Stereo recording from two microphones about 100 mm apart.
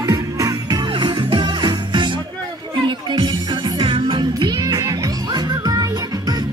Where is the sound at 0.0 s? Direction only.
35° right (ahead or behind).